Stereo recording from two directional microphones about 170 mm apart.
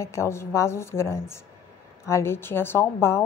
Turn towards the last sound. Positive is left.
turn(degrees=15)  # may be behind; listen again after turning